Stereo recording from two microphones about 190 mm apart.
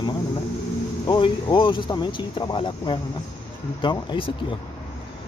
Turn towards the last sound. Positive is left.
turn(degrees=25)  # may be behind; listen again after turning